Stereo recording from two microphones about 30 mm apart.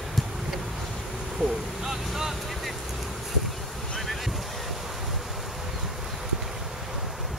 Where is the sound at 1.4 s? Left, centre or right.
Right.